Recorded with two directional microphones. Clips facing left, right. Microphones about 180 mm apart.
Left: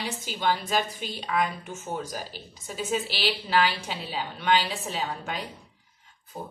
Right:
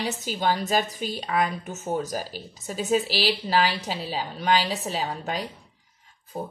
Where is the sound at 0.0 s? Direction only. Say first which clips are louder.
Right 3 dB; 45° right (ahead or behind).